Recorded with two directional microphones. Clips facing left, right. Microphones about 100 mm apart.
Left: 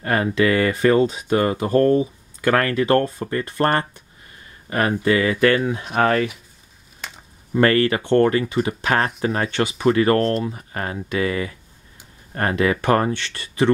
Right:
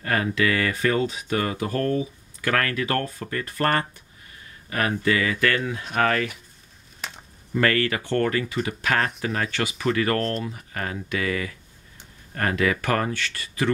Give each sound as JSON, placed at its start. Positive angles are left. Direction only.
{"t": 0.0, "sound": "speech", "side_deg": 30}
{"t": 7.0, "sound": "a sound", "side_deg": 0}
{"t": 7.6, "sound": "speech", "side_deg": 30}